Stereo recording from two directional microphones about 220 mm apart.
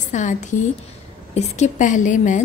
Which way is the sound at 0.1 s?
35° left (ahead or behind).